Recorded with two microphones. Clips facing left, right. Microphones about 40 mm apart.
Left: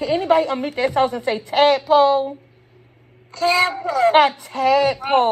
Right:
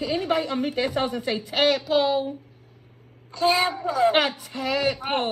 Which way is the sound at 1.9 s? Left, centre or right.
Centre.